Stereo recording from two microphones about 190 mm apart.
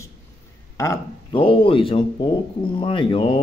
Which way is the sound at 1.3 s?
25° left (ahead or behind).